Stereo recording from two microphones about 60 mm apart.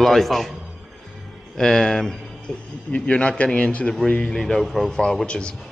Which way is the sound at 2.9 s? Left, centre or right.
Centre.